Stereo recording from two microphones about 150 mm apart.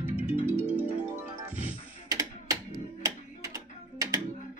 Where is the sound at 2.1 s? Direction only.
25° right (ahead or behind).